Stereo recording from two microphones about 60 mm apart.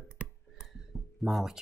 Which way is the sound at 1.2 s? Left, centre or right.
Centre.